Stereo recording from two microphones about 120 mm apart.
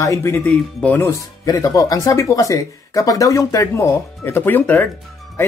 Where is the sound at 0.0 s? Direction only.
25° left (ahead or behind).